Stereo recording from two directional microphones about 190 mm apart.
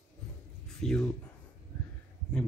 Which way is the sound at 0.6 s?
5° left (ahead or behind).